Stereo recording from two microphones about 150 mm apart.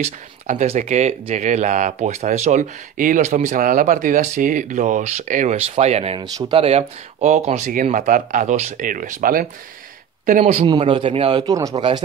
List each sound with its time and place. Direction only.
0.0 s speech: 50° right (ahead or behind); by 9.5 s 70° right (ahead or behind)
10.4 s a man's voice: 40° right (ahead or behind)